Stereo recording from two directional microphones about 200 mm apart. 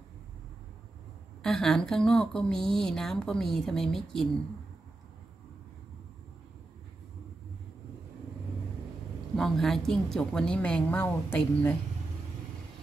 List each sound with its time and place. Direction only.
1.4 s speech: centre (ahead or behind)
9.3 s speech: centre (ahead or behind)